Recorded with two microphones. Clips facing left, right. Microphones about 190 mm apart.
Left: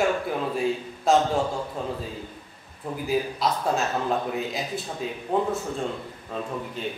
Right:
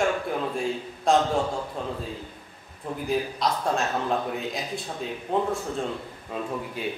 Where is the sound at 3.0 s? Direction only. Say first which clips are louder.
Left 1 dB; 5° left (ahead or behind).